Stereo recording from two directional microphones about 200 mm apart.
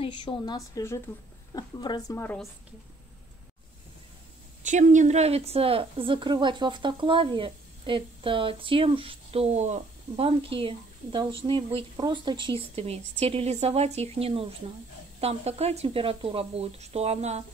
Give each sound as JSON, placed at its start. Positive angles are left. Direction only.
{"t": 0.0, "sound": "a woman's voice", "side_deg": 25}
{"t": 4.6, "sound": "speech", "side_deg": -35}